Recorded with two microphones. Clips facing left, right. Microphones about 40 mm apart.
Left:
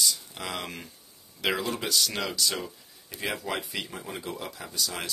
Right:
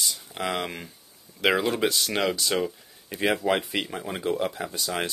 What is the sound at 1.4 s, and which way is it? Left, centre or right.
Speech, right.